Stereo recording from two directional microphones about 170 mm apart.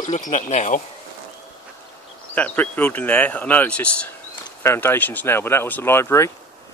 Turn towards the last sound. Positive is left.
turn(degrees=15)  # may be behind; listen again after turning